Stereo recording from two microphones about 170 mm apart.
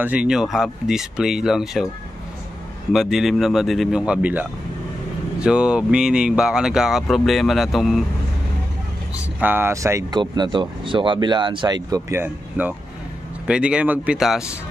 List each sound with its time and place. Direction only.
0.0 s speech: 5° right (ahead or behind)
2.9 s speech: centre (ahead or behind)
9.4 s speech: 10° right (ahead or behind)